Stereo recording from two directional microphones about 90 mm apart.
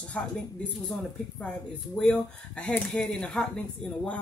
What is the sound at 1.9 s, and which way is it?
Speech, 15° left (ahead or behind).